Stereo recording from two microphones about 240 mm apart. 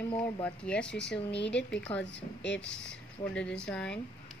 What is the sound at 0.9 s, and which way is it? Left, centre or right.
Speech, left.